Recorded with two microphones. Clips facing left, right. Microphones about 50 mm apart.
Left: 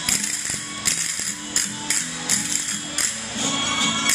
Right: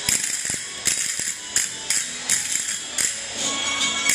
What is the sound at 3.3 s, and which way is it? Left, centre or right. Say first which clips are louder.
Music: left 3 dB; left.